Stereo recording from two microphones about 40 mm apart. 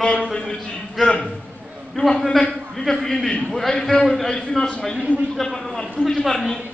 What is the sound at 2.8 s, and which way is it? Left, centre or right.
A man's voice, centre.